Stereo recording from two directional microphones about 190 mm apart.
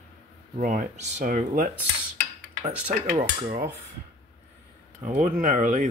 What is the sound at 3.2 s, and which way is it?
Speech, 40° right (ahead or behind).